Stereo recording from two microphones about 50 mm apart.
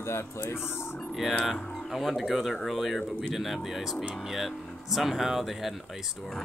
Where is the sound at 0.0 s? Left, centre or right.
Left.